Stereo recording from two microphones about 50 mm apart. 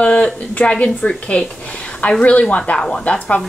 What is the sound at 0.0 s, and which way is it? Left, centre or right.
A woman's voice, left.